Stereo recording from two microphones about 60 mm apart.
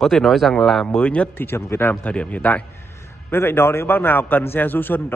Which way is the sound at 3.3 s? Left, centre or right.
Left.